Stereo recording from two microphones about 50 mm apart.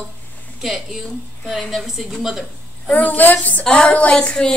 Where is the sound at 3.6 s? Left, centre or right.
Left.